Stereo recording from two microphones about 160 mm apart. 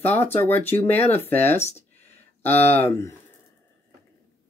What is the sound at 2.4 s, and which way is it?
Speech, 40° left (ahead or behind).